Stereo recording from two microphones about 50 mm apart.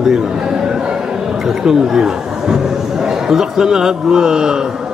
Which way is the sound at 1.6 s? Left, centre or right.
Centre.